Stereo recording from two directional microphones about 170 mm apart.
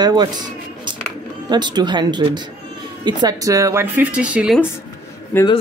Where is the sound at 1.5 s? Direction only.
25° right (ahead or behind); by 4.6 s 5° right (ahead or behind).